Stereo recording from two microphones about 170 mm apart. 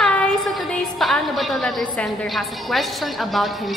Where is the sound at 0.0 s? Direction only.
5° left (ahead or behind).